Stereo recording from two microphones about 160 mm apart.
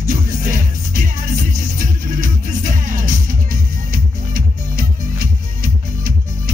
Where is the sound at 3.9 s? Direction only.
60° right (ahead or behind).